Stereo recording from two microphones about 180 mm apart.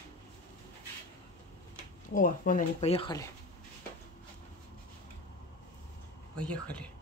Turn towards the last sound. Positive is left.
turn(degrees=5)  # may be behind; listen again after turning